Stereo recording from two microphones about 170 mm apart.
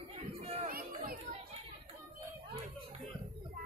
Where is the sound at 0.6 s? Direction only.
60° right (ahead or behind).